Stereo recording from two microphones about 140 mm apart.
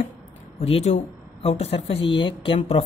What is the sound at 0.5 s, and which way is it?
Speech, 45° left (ahead or behind).